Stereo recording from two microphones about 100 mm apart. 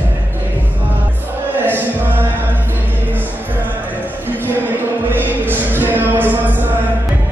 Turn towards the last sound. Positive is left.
turn(degrees=-20)  # may be behind; listen again after turning